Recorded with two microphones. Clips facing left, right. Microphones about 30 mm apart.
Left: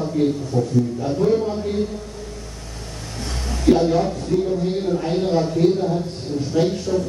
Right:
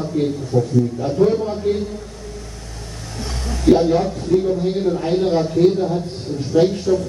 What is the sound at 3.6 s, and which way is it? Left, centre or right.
A man's voice, centre.